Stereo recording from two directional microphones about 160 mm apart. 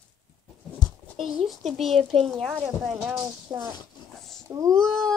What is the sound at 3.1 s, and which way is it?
Speech, 20° right (ahead or behind).